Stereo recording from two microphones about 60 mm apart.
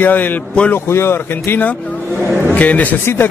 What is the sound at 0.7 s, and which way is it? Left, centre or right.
Speech, left.